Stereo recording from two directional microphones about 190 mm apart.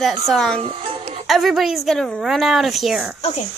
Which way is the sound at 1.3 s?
Centre (ahead or behind).